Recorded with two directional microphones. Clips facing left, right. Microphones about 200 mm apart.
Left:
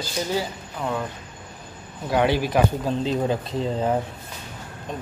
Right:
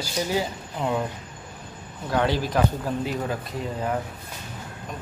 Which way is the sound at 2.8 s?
25° left (ahead or behind).